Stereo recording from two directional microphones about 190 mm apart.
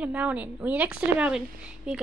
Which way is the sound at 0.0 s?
5° right (ahead or behind).